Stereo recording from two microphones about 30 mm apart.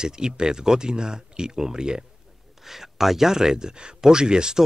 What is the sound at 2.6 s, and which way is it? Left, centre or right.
Speech, centre.